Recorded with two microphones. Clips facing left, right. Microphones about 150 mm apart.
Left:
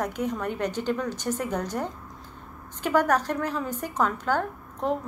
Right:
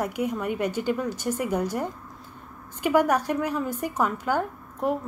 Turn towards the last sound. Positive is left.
turn(degrees=-10)  # may be behind; listen again after turning